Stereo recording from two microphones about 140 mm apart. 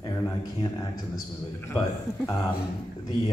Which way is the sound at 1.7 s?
20° left (ahead or behind).